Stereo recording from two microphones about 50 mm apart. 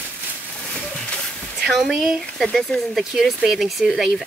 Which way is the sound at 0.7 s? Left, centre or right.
Left.